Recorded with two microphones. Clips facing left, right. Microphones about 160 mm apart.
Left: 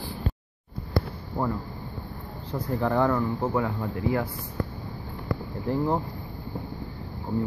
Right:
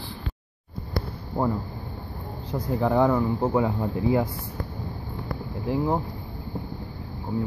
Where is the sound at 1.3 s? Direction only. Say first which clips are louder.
Right 3 dB; 30° right (ahead or behind).